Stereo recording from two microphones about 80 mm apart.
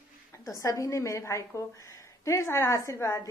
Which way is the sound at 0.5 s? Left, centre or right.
Left.